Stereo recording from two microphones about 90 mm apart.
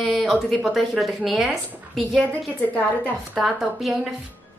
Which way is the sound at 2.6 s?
15° left (ahead or behind).